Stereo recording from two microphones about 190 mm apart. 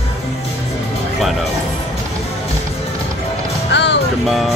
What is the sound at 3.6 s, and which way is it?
Music, 65° left (ahead or behind).